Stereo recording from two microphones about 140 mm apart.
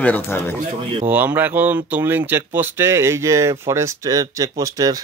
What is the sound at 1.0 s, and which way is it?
Speech, 10° right (ahead or behind).